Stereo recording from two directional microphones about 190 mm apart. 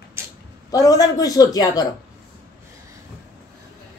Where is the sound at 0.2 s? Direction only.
15° right (ahead or behind).